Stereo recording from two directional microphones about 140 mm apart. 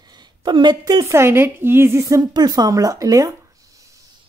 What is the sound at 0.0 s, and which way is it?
A woman's voice, 30° right (ahead or behind).